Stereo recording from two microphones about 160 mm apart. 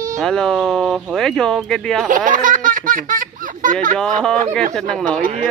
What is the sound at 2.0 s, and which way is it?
Laughter, 55° right (ahead or behind).